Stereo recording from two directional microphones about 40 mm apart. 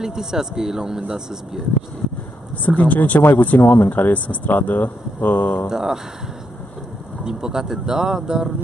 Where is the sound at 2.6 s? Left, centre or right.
Left.